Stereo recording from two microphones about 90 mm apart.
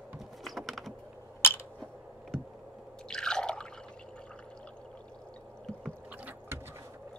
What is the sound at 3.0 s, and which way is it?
Drip, 10° left (ahead or behind).